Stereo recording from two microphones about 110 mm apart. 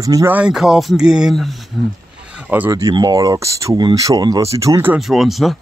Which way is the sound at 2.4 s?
15° right (ahead or behind).